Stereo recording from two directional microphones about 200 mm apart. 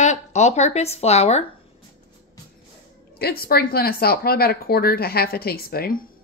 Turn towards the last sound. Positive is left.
turn(degrees=50)  # may be behind; listen again after turning